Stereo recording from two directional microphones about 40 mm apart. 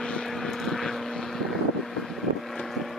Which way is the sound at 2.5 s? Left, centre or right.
Centre.